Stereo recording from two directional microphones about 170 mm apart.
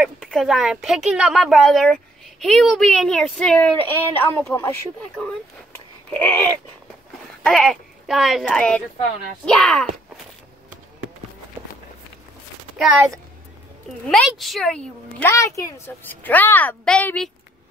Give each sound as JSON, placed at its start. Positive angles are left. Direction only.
{"t": 0.0, "sound": "speech", "side_deg": 0}
{"t": 6.1, "sound": "speech", "side_deg": 10}
{"t": 14.0, "sound": "speech", "side_deg": 0}
{"t": 15.3, "sound": "speech", "side_deg": 15}